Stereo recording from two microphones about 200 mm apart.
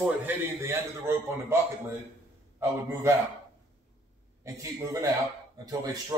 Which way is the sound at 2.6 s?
15° right (ahead or behind).